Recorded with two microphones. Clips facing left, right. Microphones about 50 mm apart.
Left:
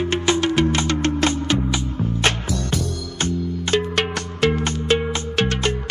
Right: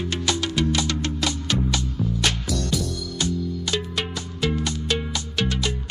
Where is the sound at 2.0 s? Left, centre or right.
Left.